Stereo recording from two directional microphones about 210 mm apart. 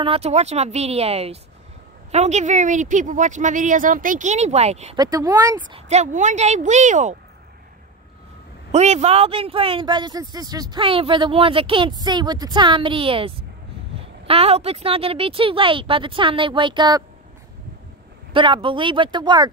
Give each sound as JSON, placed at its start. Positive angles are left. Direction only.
{"t": 0.0, "sound": "a woman's voice", "side_deg": -30}
{"t": 4.9, "sound": "speech", "side_deg": -15}
{"t": 5.7, "sound": "a woman's voice", "side_deg": -30}
{"t": 8.7, "sound": "speech", "side_deg": -30}
{"t": 18.3, "sound": "speech", "side_deg": -25}